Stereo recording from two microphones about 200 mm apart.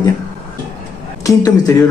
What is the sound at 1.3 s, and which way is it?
Speech, 20° left (ahead or behind).